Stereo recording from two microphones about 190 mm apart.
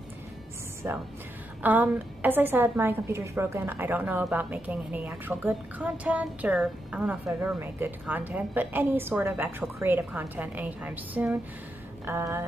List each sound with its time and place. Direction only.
0.8 s a woman's voice: 10° right (ahead or behind)